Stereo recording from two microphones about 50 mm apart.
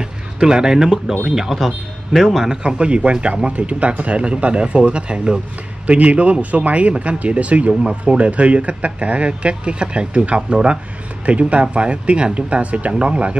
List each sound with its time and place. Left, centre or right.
0.0 s speech: centre